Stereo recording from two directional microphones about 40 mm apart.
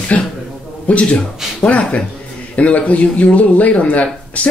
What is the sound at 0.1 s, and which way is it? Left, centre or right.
Speech, left.